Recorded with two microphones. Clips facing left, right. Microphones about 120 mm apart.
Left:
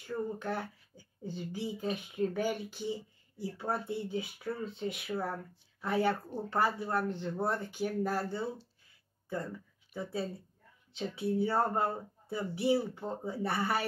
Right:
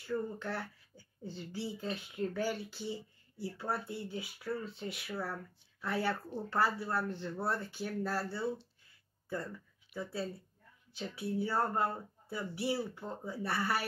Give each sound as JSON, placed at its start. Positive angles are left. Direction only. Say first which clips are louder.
{"t": 0.0, "sound": "speech", "louder": "left 1 dB", "side_deg": 15}
{"t": 9.9, "sound": "speech", "louder": "left 2 dB", "side_deg": 20}